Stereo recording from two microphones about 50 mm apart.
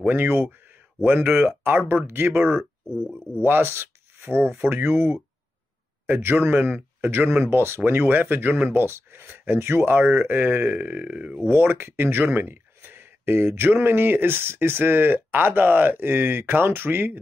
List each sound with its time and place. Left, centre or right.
0.1 s speech: right
2.0 s speech: right
2.9 s speech: centre
3.6 s writing: right
4.5 s speech: right
6.0 s speech: right
8.6 s speech: right